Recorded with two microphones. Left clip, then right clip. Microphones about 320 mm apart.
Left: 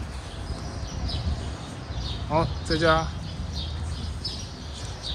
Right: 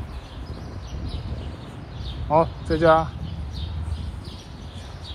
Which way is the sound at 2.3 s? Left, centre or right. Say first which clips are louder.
Right 5 dB; centre.